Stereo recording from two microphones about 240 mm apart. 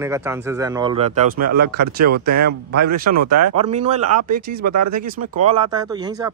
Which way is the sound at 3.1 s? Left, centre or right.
Right.